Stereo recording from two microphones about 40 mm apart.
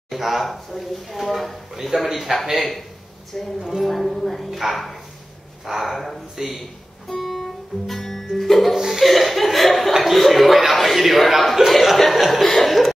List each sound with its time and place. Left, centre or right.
0.1 s a man's voice: centre
7.1 s music: centre
8.7 s laughter: centre
9.0 s chuckle: centre
9.9 s speech: centre